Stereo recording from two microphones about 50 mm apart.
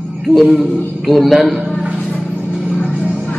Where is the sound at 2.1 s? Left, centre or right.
Left.